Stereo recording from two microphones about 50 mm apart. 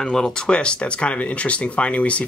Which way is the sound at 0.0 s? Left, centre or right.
Centre.